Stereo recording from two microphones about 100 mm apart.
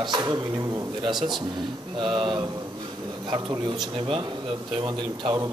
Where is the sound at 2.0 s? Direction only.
55° right (ahead or behind).